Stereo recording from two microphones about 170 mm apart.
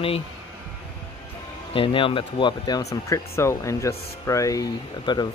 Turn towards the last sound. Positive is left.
turn(degrees=25)  # may be behind; listen again after turning